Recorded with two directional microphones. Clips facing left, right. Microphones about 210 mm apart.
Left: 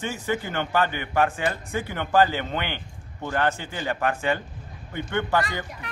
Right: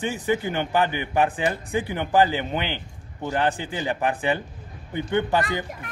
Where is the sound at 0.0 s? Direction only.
15° right (ahead or behind).